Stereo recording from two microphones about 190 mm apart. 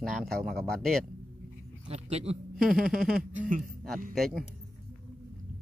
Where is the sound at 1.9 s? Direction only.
35° right (ahead or behind).